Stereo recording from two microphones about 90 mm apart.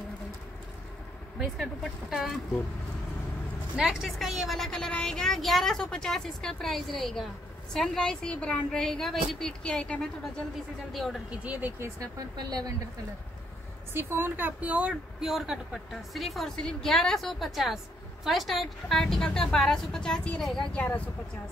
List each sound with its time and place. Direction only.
1.4 s speech: centre (ahead or behind)
3.7 s a woman's voice: 5° right (ahead or behind)
11.2 s speech: 15° right (ahead or behind)
12.4 s a woman's voice: 45° right (ahead or behind)
13.9 s speech: 25° right (ahead or behind); by 20.8 s 5° left (ahead or behind)